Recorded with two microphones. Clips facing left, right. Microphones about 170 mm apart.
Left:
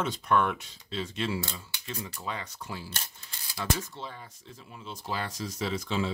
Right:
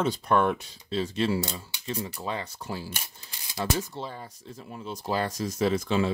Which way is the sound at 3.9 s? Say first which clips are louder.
Right 5 dB; 35° right (ahead or behind).